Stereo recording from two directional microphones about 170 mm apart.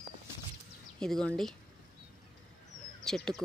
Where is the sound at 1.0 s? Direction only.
5° left (ahead or behind).